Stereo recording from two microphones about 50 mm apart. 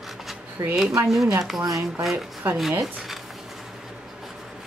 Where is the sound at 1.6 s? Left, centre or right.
Right.